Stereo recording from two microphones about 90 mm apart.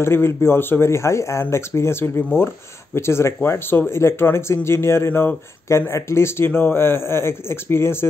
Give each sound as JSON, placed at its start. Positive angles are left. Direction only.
{"t": 0.0, "sound": "speech", "side_deg": 30}